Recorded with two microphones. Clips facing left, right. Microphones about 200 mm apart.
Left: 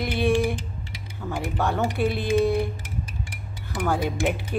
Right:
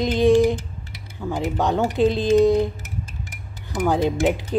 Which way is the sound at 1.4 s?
15° right (ahead or behind).